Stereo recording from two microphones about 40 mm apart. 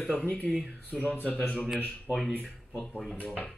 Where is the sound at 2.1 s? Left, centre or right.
Right.